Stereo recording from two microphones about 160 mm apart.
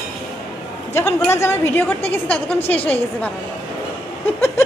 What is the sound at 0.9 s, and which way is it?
A woman's voice, 15° left (ahead or behind).